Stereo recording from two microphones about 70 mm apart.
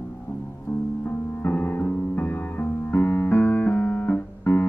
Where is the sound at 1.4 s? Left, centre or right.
Left.